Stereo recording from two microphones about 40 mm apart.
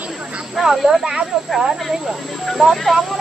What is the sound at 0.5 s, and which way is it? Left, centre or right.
Speech, centre.